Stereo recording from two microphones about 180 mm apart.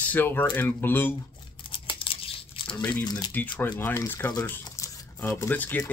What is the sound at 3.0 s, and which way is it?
Speech, 20° left (ahead or behind).